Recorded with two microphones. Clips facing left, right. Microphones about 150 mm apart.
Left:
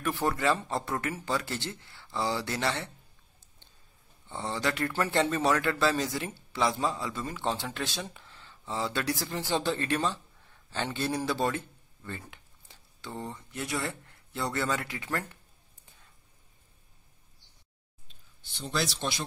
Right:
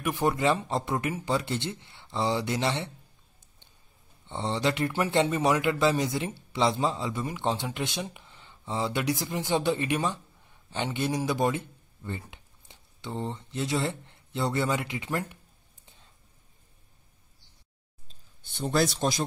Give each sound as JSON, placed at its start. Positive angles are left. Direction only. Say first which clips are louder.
{"t": 0.0, "sound": "speech", "louder": "right 3 dB", "side_deg": -15}
{"t": 4.3, "sound": "a man's voice", "louder": "right 4 dB", "side_deg": -25}
{"t": 15.8, "sound": "a sound", "louder": "right 2 dB", "side_deg": -25}
{"t": 18.0, "sound": "speech", "louder": "right 1 dB", "side_deg": -50}